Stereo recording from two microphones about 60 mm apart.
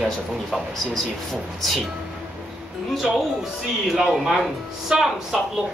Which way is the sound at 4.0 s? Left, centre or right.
Centre.